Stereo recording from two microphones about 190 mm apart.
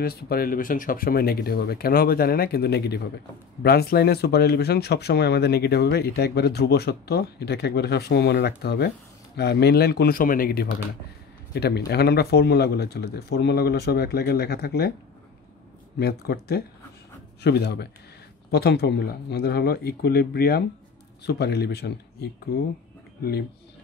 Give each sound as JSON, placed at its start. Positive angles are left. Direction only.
{"t": 0.0, "sound": "a man's voice", "side_deg": 55}
{"t": 16.0, "sound": "speech", "side_deg": 55}